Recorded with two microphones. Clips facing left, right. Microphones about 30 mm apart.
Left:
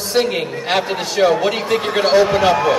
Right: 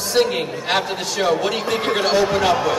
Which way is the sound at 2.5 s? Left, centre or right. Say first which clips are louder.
Left 3 dB; left.